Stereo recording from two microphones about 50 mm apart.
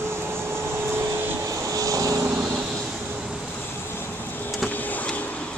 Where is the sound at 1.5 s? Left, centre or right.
Right.